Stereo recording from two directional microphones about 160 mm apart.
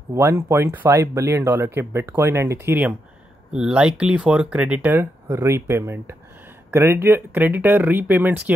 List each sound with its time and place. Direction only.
0.1 s speech: 15° right (ahead or behind)
3.5 s speech: 5° right (ahead or behind)